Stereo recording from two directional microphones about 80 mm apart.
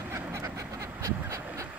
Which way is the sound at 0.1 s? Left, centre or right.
Right.